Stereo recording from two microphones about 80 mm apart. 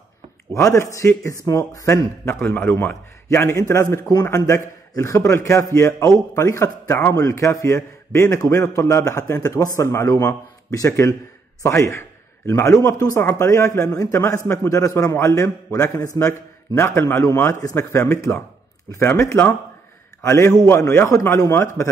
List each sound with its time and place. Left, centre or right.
0.6 s a man's voice: left
2.4 s a man's voice: left
17.6 s speech: left
17.9 s a man's voice: left